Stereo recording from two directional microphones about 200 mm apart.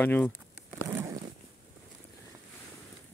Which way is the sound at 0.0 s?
10° left (ahead or behind).